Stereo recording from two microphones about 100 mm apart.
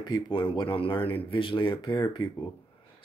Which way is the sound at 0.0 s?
50° left (ahead or behind).